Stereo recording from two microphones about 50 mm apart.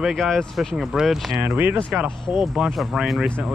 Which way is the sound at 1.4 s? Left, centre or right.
Right.